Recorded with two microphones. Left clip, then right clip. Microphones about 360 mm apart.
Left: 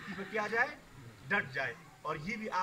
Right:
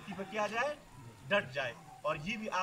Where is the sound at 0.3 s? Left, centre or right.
Centre.